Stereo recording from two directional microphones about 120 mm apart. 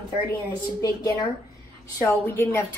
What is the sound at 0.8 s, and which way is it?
Speech, 30° left (ahead or behind).